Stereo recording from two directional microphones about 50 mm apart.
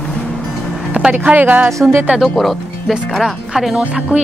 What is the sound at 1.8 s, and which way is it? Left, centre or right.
Speech, right.